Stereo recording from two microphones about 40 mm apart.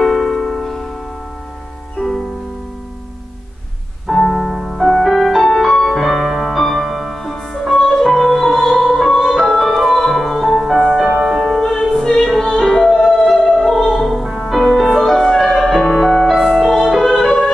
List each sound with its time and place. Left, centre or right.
0.0 s music: centre
2.0 s music: centre
4.1 s music: centre
10.8 s music: centre
11.4 s music: centre
14.4 s music: centre